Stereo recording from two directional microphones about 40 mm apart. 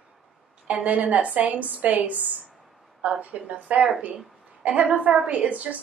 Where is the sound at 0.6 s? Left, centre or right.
Right.